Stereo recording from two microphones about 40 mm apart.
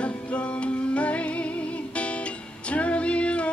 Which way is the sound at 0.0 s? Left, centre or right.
Left.